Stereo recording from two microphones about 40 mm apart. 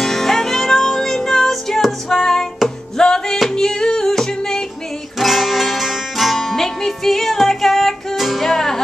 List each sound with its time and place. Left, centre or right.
0.0 s music: centre
2.0 s female singing: centre
3.0 s music: centre
5.2 s music: centre